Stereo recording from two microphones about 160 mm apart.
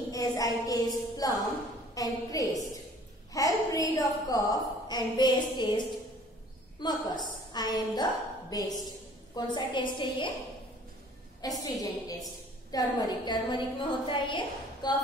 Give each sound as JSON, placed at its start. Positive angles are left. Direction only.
{"t": 0.1, "sound": "a woman's voice", "side_deg": 20}
{"t": 11.6, "sound": "a woman's voice", "side_deg": 20}